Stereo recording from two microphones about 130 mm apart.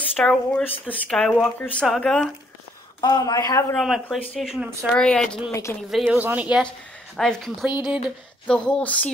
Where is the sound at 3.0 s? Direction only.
30° left (ahead or behind).